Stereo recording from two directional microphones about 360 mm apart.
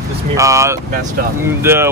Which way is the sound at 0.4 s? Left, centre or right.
Centre.